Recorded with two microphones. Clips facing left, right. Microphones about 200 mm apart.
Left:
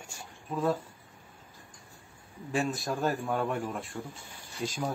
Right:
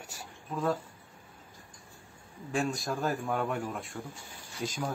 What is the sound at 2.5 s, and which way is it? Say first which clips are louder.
A man's voice: left 1 dB; 5° left (ahead or behind).